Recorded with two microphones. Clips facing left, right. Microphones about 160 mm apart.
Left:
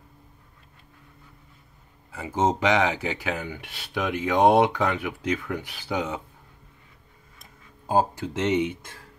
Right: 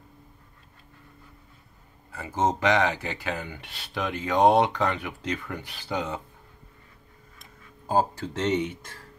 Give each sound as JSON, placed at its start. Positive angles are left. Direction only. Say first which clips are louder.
{"t": 2.1, "sound": "speech", "louder": "left 2 dB", "side_deg": 15}
{"t": 7.8, "sound": "speech", "louder": "left 2 dB", "side_deg": 15}